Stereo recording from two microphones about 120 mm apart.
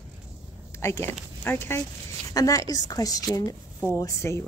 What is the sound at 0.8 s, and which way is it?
A woman's voice, 20° left (ahead or behind).